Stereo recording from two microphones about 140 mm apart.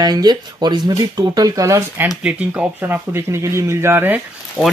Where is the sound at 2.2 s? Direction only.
10° right (ahead or behind).